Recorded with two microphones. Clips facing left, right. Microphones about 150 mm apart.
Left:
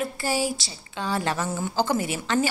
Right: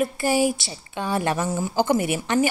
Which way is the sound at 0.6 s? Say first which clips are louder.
Right 2 dB; 20° right (ahead or behind).